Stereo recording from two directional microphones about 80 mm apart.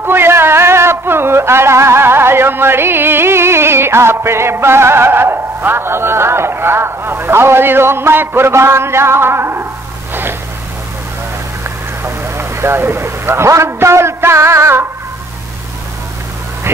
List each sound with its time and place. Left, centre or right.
0.0 s speech: right
12.0 s a man's voice: right